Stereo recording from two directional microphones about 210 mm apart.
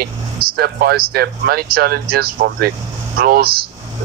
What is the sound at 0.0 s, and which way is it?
Speech, 45° right (ahead or behind).